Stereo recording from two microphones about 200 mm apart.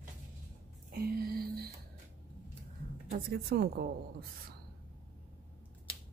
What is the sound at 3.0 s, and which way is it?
A woman's voice, 50° right (ahead or behind).